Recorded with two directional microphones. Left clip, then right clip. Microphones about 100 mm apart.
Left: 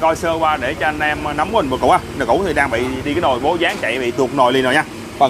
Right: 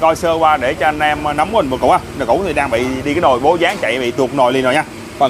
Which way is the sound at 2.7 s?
25° right (ahead or behind).